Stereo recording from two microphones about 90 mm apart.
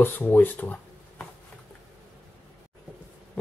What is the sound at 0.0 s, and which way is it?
Speech, 20° left (ahead or behind).